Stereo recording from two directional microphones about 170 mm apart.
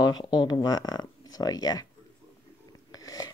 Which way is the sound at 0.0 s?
25° left (ahead or behind).